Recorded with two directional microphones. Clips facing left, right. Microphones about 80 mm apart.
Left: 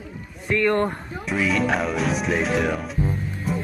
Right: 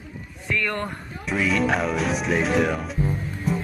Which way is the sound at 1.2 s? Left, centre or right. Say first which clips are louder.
Even; centre.